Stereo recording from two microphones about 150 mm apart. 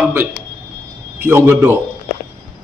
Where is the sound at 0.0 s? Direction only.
15° right (ahead or behind).